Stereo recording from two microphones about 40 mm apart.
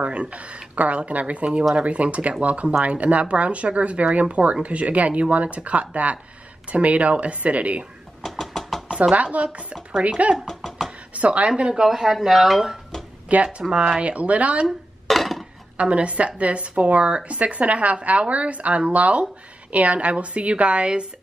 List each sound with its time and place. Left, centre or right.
0.0 s a woman's voice: right
8.2 s a sound: centre
9.1 s a woman's voice: right; by 12.6 s centre
13.3 s a woman's voice: right
13.7 s speech: centre
14.0 s a woman's voice: right
15.0 s a sound: centre
15.8 s a woman's voice: right